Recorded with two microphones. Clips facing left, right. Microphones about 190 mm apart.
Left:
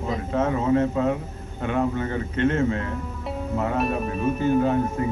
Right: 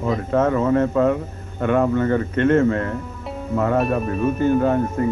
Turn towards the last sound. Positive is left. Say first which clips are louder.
# right 3 dB
turn(degrees=-55)  # may be behind; listen again after turning